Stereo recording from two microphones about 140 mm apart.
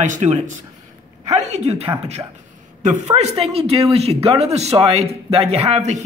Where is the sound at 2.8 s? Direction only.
55° right (ahead or behind).